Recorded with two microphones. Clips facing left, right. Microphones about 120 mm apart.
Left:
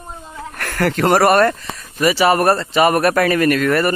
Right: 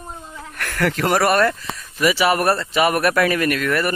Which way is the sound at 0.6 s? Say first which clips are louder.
Left 4 dB; 35° left (ahead or behind).